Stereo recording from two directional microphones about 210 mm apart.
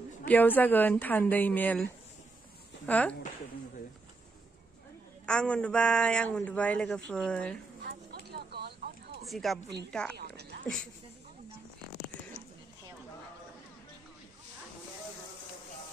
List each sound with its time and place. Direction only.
0.2 s a woman's voice: 10° left (ahead or behind)
2.9 s a woman's voice: 5° left (ahead or behind)
5.2 s a man's voice: 5° left (ahead or behind)
7.8 s a sound: 50° right (ahead or behind)
9.3 s a man's voice: centre (ahead or behind)
10.1 s a sound: 50° right (ahead or behind)